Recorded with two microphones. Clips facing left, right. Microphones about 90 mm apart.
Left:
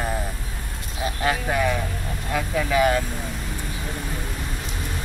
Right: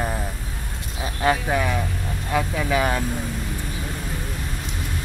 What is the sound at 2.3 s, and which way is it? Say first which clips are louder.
Speech: right 1 dB; 20° right (ahead or behind).